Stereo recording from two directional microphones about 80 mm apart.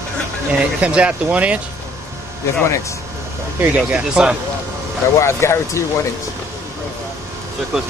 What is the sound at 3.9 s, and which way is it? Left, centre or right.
Speech, centre.